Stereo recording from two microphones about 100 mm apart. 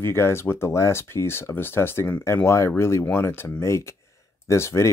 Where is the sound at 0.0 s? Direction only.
25° left (ahead or behind).